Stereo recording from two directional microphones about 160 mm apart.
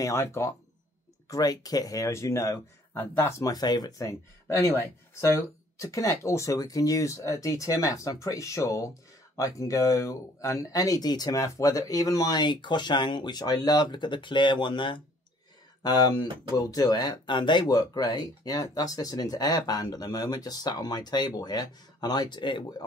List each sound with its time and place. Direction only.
0.0 s speech: 15° left (ahead or behind)